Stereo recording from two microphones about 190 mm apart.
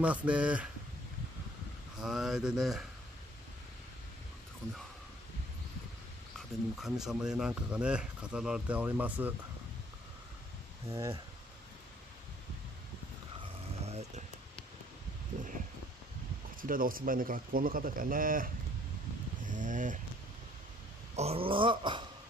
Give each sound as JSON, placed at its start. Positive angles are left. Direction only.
{"t": 0.0, "sound": "speech", "side_deg": -5}
{"t": 2.0, "sound": "speech", "side_deg": -5}
{"t": 6.8, "sound": "speech", "side_deg": 0}
{"t": 10.9, "sound": "speech", "side_deg": -15}
{"t": 13.4, "sound": "mechanisms", "side_deg": -35}
{"t": 16.6, "sound": "speech", "side_deg": -50}
{"t": 19.4, "sound": "a sound", "side_deg": -40}
{"t": 21.2, "sound": "dog", "side_deg": -30}